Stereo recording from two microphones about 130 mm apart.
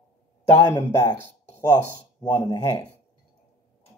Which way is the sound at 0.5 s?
20° left (ahead or behind).